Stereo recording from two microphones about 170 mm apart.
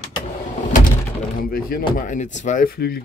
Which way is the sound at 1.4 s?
60° left (ahead or behind).